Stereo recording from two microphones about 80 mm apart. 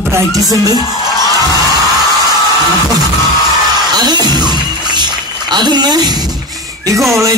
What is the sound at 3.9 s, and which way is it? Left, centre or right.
Music, right.